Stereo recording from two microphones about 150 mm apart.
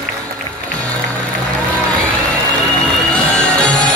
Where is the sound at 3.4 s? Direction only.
5° left (ahead or behind).